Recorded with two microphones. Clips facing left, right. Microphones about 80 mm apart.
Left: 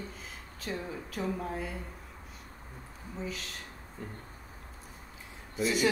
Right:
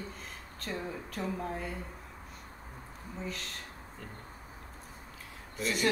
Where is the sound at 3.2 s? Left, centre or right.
Centre.